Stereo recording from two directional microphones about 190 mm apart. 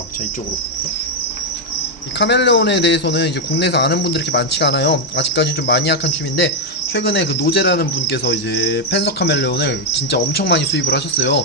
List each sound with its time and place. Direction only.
2.1 s speech: 65° left (ahead or behind)